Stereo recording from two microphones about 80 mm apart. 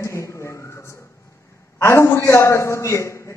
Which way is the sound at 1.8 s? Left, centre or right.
Left.